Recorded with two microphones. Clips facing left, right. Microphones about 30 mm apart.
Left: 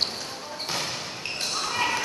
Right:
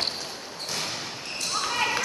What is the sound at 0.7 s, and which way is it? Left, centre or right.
Basketball bounce, centre.